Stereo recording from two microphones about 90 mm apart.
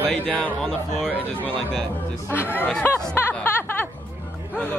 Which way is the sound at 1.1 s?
15° left (ahead or behind).